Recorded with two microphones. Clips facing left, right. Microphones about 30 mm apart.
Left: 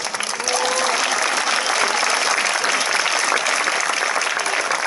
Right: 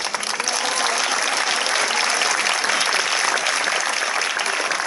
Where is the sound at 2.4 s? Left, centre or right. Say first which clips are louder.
Left 1 dB; centre.